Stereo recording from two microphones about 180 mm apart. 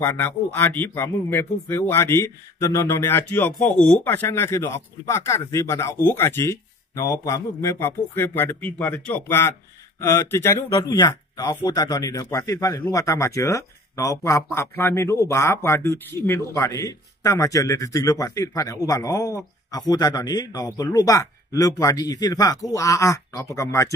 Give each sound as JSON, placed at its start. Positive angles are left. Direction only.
{"t": 0.0, "sound": "speech", "side_deg": 10}